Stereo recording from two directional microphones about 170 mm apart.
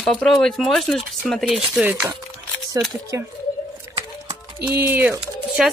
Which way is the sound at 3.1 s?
15° right (ahead or behind).